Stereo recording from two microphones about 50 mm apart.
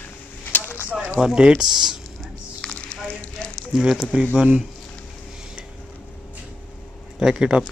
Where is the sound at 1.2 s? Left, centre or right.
Centre.